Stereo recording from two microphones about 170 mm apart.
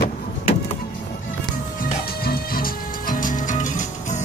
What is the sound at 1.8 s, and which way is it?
Music, 65° left (ahead or behind).